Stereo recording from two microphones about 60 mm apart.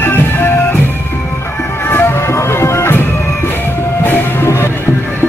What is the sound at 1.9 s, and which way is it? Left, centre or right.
Music, left.